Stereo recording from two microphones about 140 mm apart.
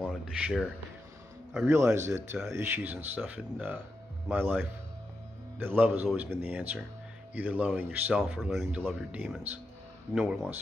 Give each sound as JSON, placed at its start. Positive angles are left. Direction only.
{"t": 0.0, "sound": "a sound", "side_deg": -5}
{"t": 1.7, "sound": "speech", "side_deg": -20}
{"t": 8.8, "sound": "speech", "side_deg": -10}